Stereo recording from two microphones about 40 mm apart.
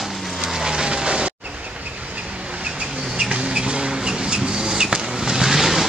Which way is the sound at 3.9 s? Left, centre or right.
Right.